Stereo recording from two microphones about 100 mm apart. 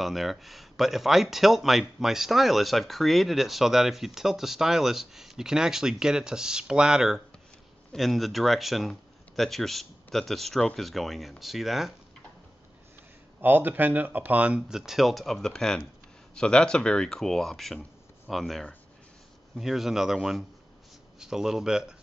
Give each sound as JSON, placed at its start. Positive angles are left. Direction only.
{"t": 0.0, "sound": "speech", "side_deg": 0}
{"t": 13.4, "sound": "speech", "side_deg": -15}
{"t": 14.8, "sound": "speech", "side_deg": 0}